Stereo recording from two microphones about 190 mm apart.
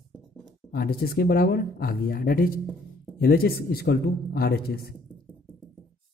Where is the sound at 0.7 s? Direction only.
50° left (ahead or behind).